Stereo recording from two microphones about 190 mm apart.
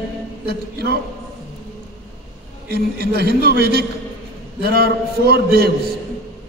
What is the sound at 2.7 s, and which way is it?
A man's voice, 55° right (ahead or behind).